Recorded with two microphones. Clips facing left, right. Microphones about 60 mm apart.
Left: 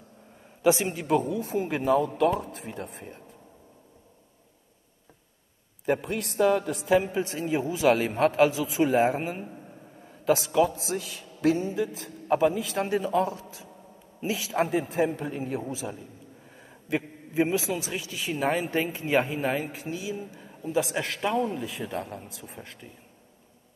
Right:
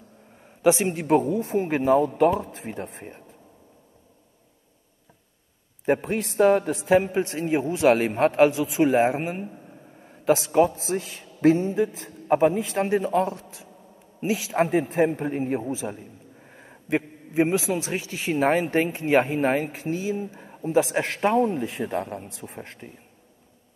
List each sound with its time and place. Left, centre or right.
0.6 s a man's voice: right
0.9 s speech: right
5.9 s speech: right
9.1 s a man's voice: right
10.0 s a sound: right
10.5 s a man's voice: right
15.0 s a man's voice: right
21.7 s speech: right
22.0 s speech: right